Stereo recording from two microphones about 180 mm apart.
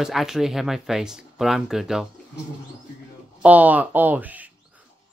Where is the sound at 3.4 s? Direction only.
10° right (ahead or behind).